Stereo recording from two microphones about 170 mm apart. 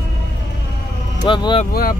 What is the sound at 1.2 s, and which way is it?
Speech, 25° left (ahead or behind).